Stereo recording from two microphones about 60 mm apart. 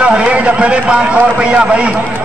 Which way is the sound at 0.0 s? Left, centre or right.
Centre.